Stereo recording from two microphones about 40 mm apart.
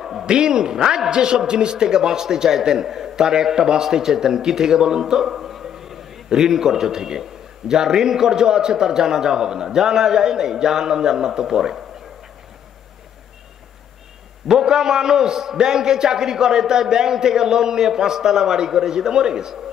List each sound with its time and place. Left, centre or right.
0.0 s a sound: centre
0.3 s a man's voice: right
14.5 s a man's voice: centre